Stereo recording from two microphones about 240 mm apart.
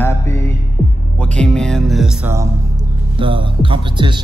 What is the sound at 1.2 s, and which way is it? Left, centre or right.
Speech, centre.